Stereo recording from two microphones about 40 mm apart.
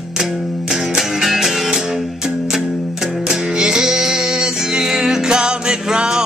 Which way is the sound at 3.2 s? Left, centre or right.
Centre.